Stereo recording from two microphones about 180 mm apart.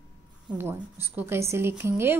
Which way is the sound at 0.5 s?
10° right (ahead or behind).